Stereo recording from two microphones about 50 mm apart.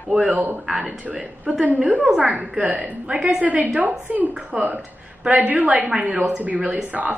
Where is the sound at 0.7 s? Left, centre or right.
Right.